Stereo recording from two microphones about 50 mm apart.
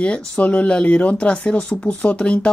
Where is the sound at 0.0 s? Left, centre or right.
Left.